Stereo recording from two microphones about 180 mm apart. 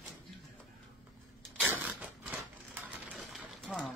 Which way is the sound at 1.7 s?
10° right (ahead or behind).